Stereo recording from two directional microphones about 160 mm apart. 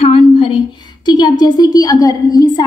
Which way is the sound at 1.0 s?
25° left (ahead or behind).